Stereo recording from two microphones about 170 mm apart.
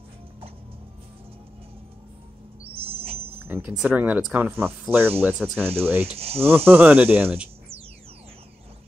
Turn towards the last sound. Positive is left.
turn(degrees=-10)  # may be behind; listen again after turning